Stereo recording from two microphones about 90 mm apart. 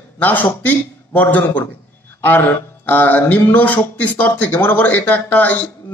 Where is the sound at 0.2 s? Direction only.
20° left (ahead or behind).